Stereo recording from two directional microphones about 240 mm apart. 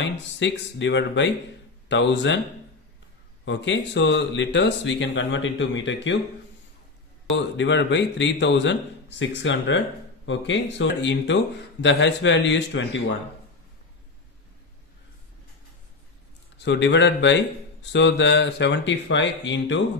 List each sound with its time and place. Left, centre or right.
0.1 s speech: left
3.4 s speech: left
7.3 s speech: left
16.5 s speech: left